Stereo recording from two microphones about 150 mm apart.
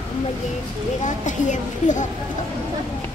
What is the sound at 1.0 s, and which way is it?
Speech, 55° left (ahead or behind).